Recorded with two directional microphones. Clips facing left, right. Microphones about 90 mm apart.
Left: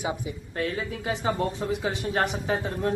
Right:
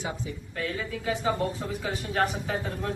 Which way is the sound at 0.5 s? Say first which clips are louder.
Left 3 dB; 30° left (ahead or behind).